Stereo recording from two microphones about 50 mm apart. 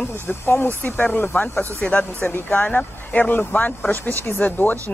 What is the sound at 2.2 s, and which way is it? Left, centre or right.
Speech, left.